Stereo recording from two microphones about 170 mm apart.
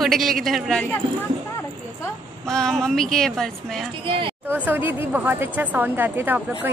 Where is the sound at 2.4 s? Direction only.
5° left (ahead or behind).